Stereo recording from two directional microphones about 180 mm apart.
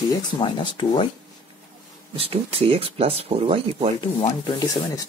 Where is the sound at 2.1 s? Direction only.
30° right (ahead or behind).